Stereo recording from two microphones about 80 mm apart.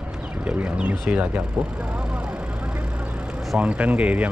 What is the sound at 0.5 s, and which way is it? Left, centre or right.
Speech, centre.